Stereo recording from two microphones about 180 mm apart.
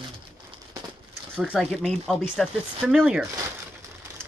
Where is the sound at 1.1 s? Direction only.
5° right (ahead or behind).